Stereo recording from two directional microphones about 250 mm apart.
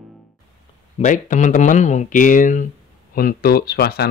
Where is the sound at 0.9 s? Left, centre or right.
Left.